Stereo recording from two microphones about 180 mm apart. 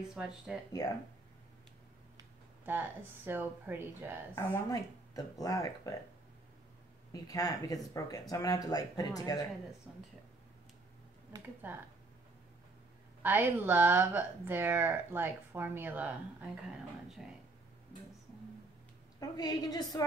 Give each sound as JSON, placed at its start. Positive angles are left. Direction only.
{"t": 0.1, "sound": "speech", "side_deg": -5}
{"t": 2.1, "sound": "speech", "side_deg": -10}
{"t": 4.4, "sound": "speech", "side_deg": 15}
{"t": 7.1, "sound": "speech", "side_deg": 20}
{"t": 9.9, "sound": "speech", "side_deg": 0}
{"t": 11.3, "sound": "speech", "side_deg": -10}
{"t": 13.2, "sound": "speech", "side_deg": -10}
{"t": 19.1, "sound": "speech", "side_deg": 20}